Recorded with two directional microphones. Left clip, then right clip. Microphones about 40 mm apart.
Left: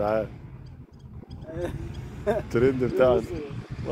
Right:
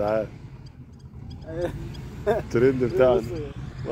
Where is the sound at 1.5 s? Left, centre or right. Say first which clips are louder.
Right 3 dB; right.